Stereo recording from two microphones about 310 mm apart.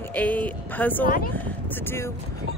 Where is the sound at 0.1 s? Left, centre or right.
Centre.